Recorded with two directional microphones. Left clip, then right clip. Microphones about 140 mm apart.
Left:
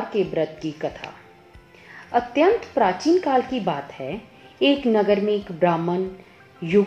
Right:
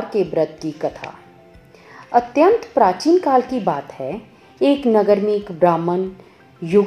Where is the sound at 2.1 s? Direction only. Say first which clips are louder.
Right 5 dB; 30° right (ahead or behind).